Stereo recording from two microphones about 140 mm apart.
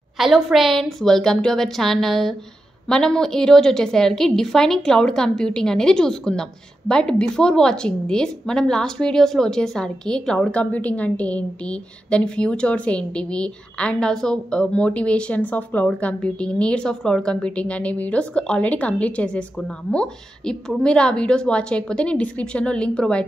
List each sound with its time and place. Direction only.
0.2 s a woman's voice: centre (ahead or behind)